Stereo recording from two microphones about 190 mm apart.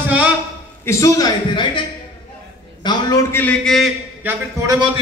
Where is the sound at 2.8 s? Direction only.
15° left (ahead or behind).